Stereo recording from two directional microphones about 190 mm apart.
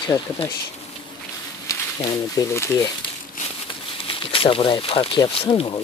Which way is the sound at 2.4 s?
15° left (ahead or behind).